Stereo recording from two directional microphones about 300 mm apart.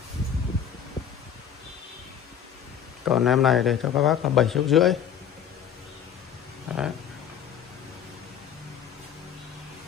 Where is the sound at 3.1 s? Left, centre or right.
Centre.